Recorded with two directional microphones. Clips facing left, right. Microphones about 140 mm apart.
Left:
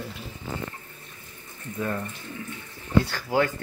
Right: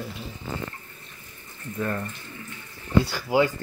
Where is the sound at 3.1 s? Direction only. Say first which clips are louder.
Right 2 dB; 10° right (ahead or behind).